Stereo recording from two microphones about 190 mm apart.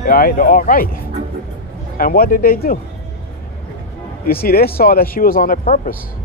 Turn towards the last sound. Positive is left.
turn(degrees=50)  # may be behind; listen again after turning